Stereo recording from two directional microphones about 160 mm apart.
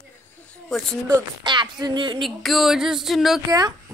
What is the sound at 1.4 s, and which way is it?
Speech, 30° right (ahead or behind).